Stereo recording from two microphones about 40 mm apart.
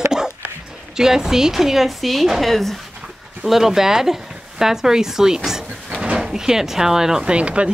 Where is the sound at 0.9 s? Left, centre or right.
Centre.